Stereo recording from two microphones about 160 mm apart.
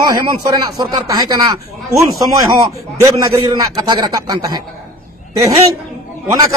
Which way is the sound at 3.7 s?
25° right (ahead or behind).